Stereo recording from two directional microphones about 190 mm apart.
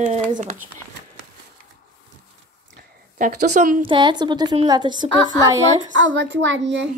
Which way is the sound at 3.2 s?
40° right (ahead or behind).